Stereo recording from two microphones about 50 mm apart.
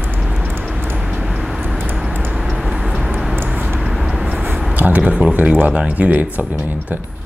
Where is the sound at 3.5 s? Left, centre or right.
Right.